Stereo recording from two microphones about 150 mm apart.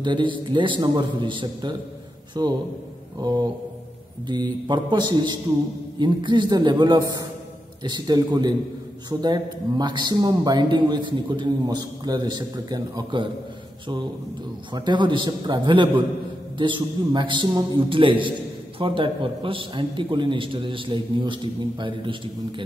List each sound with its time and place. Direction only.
0.0 s a man's voice: 30° right (ahead or behind)
14.7 s a man's voice: 30° right (ahead or behind)